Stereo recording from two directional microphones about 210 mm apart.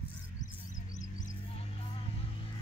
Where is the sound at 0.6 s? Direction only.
35° left (ahead or behind).